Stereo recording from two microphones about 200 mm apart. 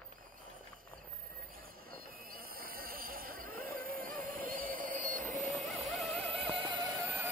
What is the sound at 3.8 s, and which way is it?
Music, 45° right (ahead or behind).